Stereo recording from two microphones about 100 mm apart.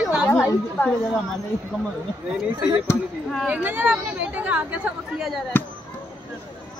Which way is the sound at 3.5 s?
20° right (ahead or behind).